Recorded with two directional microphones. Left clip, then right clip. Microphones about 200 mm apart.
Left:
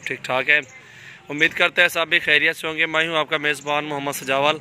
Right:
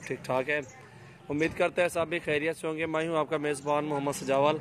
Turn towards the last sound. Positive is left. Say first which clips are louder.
# left 6 dB
turn(degrees=0)  # may be behind; listen again after turning